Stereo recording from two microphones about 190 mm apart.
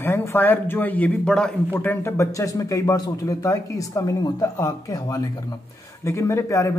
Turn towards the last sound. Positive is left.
turn(degrees=15)  # may be behind; listen again after turning